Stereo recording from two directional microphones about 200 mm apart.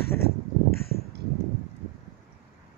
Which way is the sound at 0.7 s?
50° left (ahead or behind).